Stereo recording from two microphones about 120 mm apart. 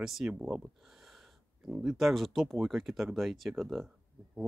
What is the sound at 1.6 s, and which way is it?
Speech, 5° right (ahead or behind).